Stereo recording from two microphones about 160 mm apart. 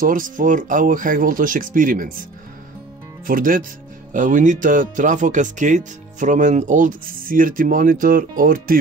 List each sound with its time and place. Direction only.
0.0 s speech: 60° right (ahead or behind)
3.3 s speech: 60° right (ahead or behind)